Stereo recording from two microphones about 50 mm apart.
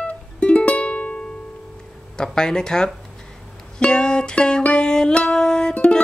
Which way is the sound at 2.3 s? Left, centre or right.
Centre.